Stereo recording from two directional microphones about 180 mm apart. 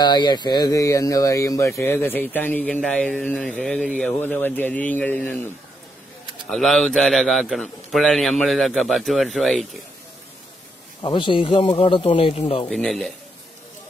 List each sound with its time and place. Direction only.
0.0 s speech: 25° left (ahead or behind)
6.5 s a man's voice: centre (ahead or behind)
11.0 s speech: 25° left (ahead or behind)
12.6 s a man's voice: centre (ahead or behind)